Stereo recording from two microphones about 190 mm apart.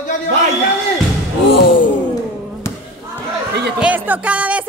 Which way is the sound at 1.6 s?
25° left (ahead or behind).